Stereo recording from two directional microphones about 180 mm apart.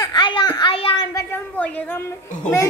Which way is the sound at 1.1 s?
10° left (ahead or behind).